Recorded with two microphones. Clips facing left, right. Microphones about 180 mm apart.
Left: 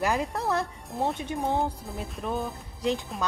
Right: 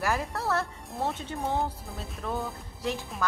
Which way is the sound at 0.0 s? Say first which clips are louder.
Left 2 dB; 20° left (ahead or behind).